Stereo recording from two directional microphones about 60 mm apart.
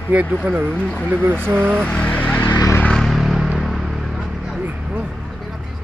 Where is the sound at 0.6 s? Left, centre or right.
Centre.